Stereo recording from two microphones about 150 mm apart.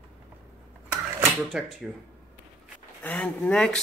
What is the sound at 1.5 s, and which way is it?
Speech, centre (ahead or behind).